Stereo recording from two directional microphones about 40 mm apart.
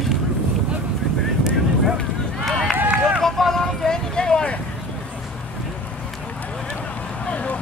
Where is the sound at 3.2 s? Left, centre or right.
Centre; by 4.6 s left.